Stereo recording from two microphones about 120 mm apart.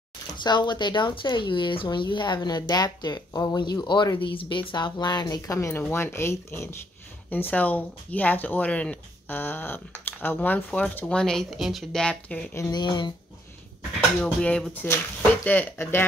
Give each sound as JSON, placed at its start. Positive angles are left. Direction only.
{"t": 0.4, "sound": "speech", "side_deg": 40}
{"t": 12.5, "sound": "speech", "side_deg": 25}
{"t": 12.8, "sound": "speech", "side_deg": 40}
{"t": 14.2, "sound": "speech", "side_deg": 5}